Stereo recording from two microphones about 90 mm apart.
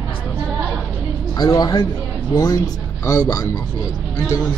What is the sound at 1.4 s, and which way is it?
A man's voice, 50° left (ahead or behind).